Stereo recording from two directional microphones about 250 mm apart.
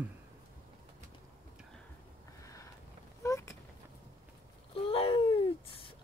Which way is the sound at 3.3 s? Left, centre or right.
Centre.